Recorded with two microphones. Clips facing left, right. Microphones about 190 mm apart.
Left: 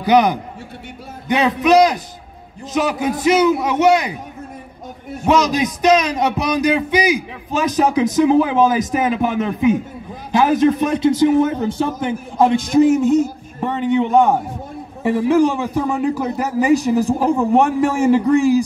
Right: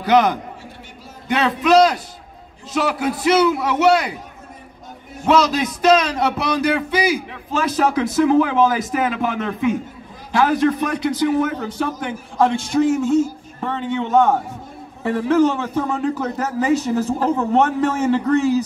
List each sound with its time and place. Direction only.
0.0 s speech: 15° left (ahead or behind)
5.2 s a man's voice: 15° left (ahead or behind)